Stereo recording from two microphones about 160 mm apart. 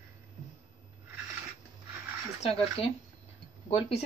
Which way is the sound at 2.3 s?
40° left (ahead or behind).